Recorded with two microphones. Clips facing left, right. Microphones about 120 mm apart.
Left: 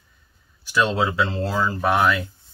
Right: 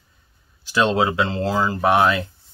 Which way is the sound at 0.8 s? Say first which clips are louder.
Right 3 dB; 20° right (ahead or behind).